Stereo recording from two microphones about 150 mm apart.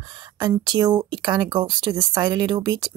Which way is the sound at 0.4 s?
30° right (ahead or behind).